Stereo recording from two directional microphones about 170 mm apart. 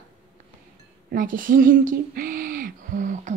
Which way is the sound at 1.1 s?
55° right (ahead or behind).